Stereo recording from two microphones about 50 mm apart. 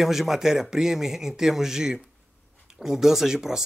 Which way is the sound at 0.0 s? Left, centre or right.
Centre.